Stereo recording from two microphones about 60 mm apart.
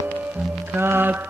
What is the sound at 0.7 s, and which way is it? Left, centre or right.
Mantra, right.